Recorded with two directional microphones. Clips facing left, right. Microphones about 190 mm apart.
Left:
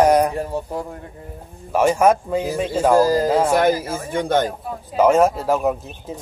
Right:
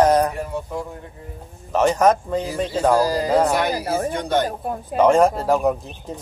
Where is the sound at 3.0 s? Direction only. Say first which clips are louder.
Left 1 dB; 45° left (ahead or behind).